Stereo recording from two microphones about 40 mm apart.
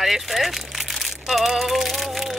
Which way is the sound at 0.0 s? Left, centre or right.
Centre.